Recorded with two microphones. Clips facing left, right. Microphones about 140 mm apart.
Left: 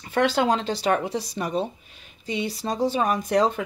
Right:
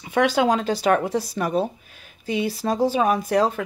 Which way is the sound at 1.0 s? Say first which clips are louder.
Right 4 dB; 50° right (ahead or behind).